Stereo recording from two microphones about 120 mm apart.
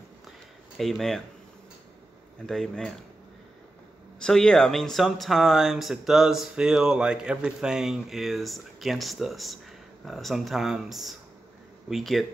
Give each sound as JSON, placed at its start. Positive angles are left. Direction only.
{"t": 0.7, "sound": "speech", "side_deg": 0}
{"t": 2.4, "sound": "speech", "side_deg": 5}
{"t": 4.2, "sound": "speech", "side_deg": 5}